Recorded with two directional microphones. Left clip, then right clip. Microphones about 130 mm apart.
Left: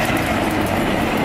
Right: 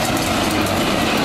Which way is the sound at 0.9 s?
35° right (ahead or behind).